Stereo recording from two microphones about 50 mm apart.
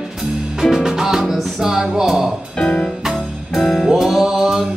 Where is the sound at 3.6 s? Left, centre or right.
Centre.